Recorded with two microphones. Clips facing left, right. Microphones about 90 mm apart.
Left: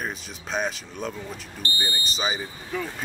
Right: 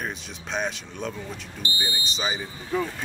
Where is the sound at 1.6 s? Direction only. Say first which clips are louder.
Left 1 dB; 20° right (ahead or behind).